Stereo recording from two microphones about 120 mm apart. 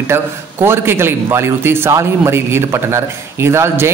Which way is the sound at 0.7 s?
20° right (ahead or behind).